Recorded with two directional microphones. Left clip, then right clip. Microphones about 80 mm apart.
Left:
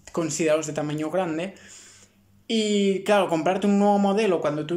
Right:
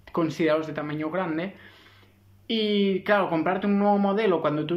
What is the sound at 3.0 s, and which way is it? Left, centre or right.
Speech, left.